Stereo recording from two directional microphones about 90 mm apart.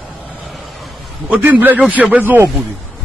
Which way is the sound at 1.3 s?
20° right (ahead or behind).